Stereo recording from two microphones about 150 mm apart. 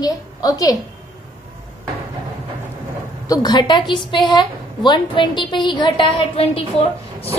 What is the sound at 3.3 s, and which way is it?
A woman's voice, 25° left (ahead or behind).